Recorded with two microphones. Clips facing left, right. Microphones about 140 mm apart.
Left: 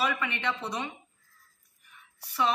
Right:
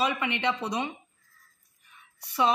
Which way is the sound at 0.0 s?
20° right (ahead or behind).